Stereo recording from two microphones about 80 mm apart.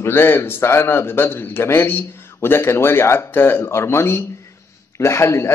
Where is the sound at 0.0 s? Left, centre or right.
Left.